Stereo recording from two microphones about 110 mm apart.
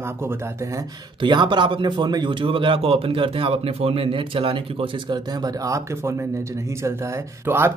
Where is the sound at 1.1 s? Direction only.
45° right (ahead or behind).